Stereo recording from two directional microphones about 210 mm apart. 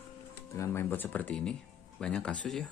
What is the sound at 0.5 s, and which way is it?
Speech, 10° left (ahead or behind).